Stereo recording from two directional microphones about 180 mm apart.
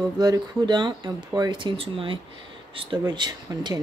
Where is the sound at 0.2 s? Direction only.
20° right (ahead or behind).